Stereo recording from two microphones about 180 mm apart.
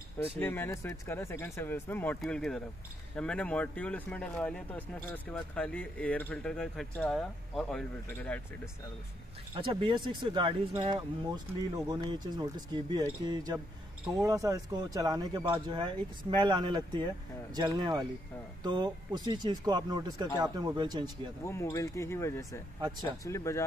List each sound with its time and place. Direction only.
0.4 s speech: 10° left (ahead or behind)
9.6 s speech: 30° right (ahead or behind)
21.5 s speech: 15° left (ahead or behind)
22.8 s speech: 25° right (ahead or behind)
23.2 s speech: 15° left (ahead or behind)